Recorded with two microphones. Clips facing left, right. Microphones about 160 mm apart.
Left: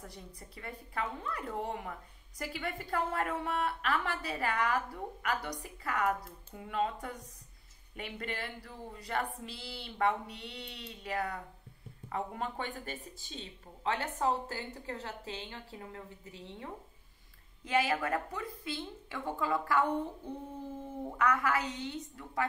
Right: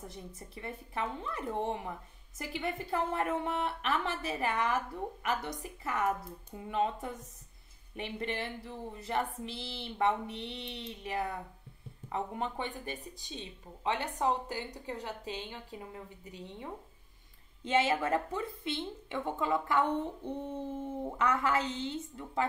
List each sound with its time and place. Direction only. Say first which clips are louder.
0.0 s a woman's voice: right 3 dB; 20° right (ahead or behind)
21.0 s a woman's voice: left 1 dB; 25° right (ahead or behind)